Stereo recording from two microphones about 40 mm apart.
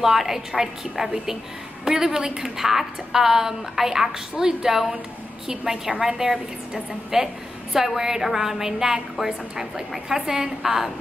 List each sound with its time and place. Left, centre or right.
0.0 s a woman's voice: centre